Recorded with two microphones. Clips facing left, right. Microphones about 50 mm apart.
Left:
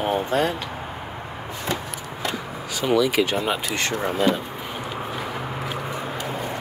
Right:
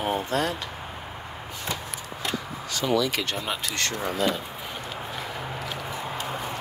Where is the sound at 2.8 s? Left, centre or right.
Centre.